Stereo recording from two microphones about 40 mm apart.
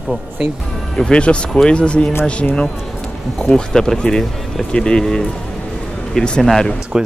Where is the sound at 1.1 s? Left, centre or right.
Left.